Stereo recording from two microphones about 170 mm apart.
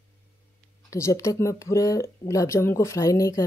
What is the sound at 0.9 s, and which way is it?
Speech, 20° left (ahead or behind).